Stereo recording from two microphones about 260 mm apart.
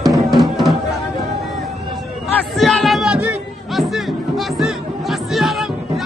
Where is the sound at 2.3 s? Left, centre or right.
Centre.